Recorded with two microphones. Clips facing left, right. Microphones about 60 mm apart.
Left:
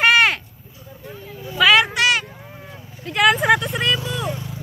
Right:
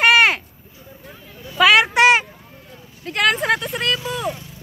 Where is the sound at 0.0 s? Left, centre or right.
Centre.